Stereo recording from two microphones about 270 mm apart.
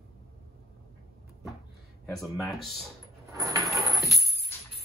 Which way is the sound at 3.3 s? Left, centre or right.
Centre.